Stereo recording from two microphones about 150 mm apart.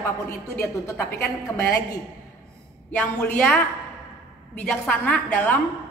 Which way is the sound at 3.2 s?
10° left (ahead or behind).